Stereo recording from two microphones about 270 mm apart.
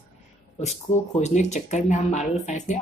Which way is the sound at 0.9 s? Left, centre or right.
Left.